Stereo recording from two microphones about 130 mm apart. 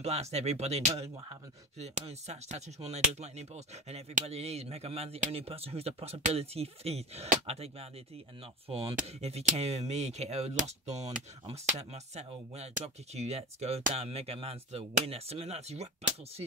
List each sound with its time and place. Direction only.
0.0 s speech: 55° right (ahead or behind)